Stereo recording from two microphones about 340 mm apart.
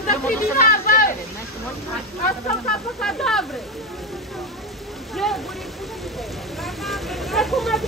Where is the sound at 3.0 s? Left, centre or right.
Centre.